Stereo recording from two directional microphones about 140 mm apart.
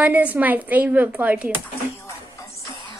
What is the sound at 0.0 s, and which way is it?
A woman's voice, 10° right (ahead or behind).